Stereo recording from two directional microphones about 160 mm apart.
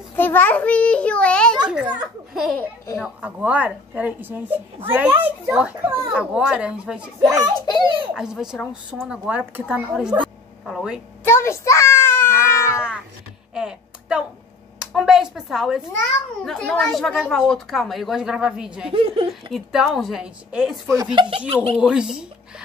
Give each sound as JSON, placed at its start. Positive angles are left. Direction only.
{"t": 0.1, "sound": "a child's voice", "side_deg": 10}
{"t": 5.9, "sound": "speech", "side_deg": -20}
{"t": 6.1, "sound": "a woman's voice", "side_deg": -5}
{"t": 7.2, "sound": "speech", "side_deg": -20}
{"t": 7.6, "sound": "a child's voice", "side_deg": 25}
{"t": 8.1, "sound": "a woman's voice", "side_deg": -5}
{"t": 11.2, "sound": "a child's voice", "side_deg": 15}
{"t": 13.6, "sound": "a sound", "side_deg": -5}
{"t": 14.8, "sound": "a woman's voice", "side_deg": -5}
{"t": 18.9, "sound": "speech", "side_deg": -35}
{"t": 19.5, "sound": "a woman's voice", "side_deg": 0}
{"t": 20.9, "sound": "speech", "side_deg": -25}
{"t": 21.7, "sound": "a woman's voice", "side_deg": -5}